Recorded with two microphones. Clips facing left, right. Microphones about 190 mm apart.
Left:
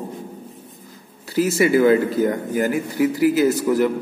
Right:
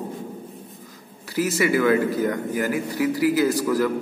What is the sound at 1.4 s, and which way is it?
A man's voice, 25° left (ahead or behind).